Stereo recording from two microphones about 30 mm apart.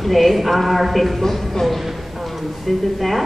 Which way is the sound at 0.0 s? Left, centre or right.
Centre.